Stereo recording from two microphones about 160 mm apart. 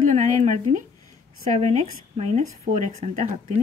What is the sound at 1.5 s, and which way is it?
Speech, 50° right (ahead or behind).